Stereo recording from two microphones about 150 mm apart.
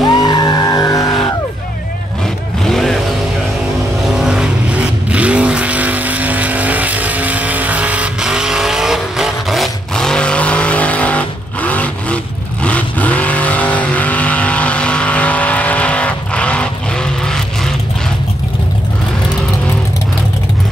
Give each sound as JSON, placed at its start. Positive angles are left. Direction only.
{"t": 0.0, "sound": "music", "side_deg": 25}
{"t": 2.6, "sound": "vehicle", "side_deg": 0}
{"t": 4.1, "sound": "vehicle", "side_deg": -5}